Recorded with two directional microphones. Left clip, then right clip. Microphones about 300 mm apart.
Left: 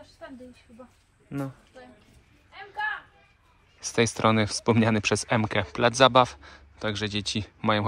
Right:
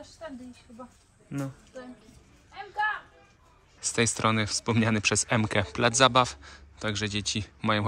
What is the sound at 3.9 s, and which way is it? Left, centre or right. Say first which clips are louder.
Speech: left 3 dB; centre.